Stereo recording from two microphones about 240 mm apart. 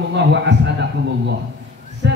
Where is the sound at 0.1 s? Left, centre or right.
Right.